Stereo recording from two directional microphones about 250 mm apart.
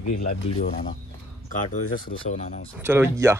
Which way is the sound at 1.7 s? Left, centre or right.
Left.